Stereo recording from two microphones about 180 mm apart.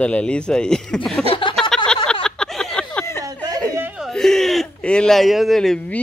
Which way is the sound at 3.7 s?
10° right (ahead or behind).